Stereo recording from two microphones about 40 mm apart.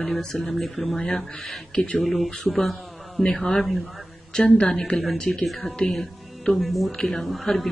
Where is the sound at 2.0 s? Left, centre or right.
Centre.